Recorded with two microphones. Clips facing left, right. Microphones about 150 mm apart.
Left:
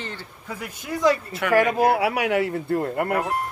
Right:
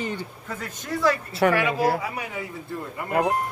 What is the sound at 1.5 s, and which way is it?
Speech, 45° left (ahead or behind).